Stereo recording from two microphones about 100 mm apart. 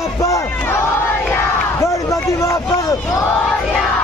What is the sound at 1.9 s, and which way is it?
Speech, 35° left (ahead or behind).